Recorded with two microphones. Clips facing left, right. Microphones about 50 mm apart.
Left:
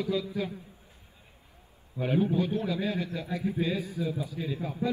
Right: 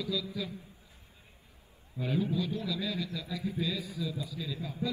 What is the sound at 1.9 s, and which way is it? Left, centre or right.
A man's voice, left.